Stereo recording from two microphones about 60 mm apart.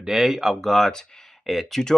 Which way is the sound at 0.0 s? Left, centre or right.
Centre.